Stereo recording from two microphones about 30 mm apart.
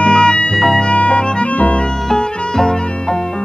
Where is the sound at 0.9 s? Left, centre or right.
Left.